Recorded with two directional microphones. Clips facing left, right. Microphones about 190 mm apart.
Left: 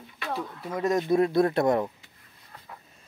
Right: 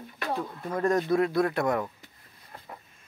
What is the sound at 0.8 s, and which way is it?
Speech, 20° left (ahead or behind).